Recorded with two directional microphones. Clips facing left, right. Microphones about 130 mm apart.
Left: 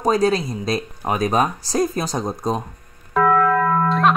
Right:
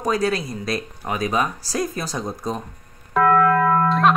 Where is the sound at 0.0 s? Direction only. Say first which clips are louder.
Left 4 dB; 35° left (ahead or behind).